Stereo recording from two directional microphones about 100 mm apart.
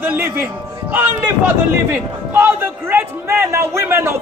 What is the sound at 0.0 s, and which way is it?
A man's voice, 20° right (ahead or behind).